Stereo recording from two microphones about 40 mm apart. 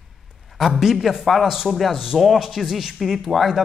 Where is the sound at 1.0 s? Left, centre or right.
Centre.